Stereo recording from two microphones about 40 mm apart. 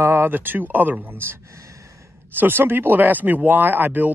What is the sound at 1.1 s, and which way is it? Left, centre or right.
Speech, right.